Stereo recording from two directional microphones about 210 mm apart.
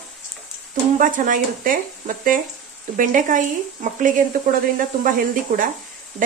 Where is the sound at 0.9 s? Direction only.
40° right (ahead or behind).